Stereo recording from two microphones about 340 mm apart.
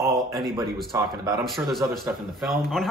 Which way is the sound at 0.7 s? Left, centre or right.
Centre.